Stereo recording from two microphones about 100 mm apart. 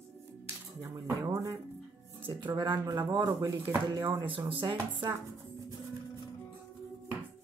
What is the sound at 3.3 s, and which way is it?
Speech, 30° right (ahead or behind).